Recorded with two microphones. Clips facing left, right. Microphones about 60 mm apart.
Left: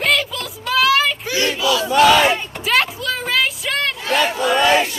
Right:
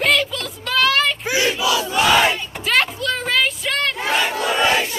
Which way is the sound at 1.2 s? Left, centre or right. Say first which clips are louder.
Right 1 dB; centre.